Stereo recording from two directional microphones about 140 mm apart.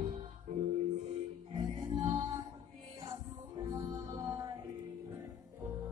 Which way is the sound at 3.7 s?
25° right (ahead or behind).